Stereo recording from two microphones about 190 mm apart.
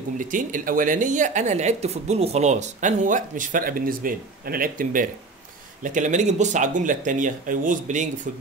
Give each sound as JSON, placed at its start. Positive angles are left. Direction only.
{"t": 0.2, "sound": "a woman's voice", "side_deg": -45}